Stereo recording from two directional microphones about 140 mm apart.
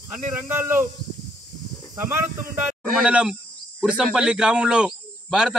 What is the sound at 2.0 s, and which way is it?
Speech, 15° right (ahead or behind).